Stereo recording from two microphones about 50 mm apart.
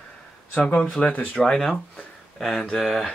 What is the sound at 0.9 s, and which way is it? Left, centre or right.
Speech, centre.